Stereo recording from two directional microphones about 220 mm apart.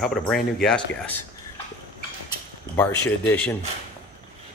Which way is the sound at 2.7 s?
10° left (ahead or behind).